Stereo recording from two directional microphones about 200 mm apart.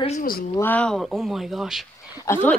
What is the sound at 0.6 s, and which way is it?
Speech, 10° left (ahead or behind).